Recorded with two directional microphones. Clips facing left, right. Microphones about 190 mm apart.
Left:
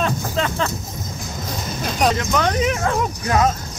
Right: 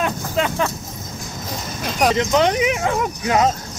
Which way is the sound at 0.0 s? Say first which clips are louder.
Right 1 dB; 15° right (ahead or behind).